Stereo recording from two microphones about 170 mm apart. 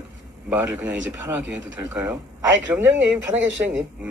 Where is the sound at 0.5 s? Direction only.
15° right (ahead or behind).